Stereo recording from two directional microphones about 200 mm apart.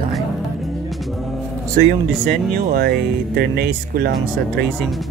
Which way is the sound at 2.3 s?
55° right (ahead or behind).